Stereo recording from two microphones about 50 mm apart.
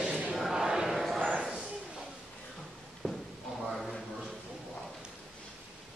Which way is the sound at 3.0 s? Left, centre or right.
Centre.